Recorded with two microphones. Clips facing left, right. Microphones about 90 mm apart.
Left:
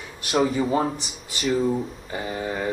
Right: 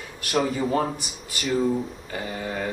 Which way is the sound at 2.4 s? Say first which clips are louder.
Left 2 dB; 25° left (ahead or behind).